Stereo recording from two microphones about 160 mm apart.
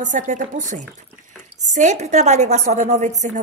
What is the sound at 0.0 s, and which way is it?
A woman's voice, 50° right (ahead or behind).